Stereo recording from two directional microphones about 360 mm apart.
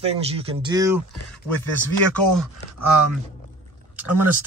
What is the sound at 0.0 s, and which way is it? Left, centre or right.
Speech, centre.